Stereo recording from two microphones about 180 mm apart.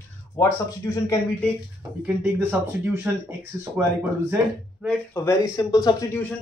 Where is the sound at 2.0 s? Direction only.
10° right (ahead or behind).